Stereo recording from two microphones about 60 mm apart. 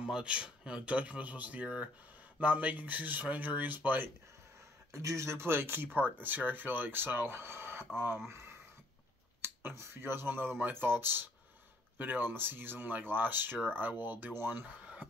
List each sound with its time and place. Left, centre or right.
0.0 s speech: centre; by 4.1 s right
4.9 s speech: right
9.4 s speech: right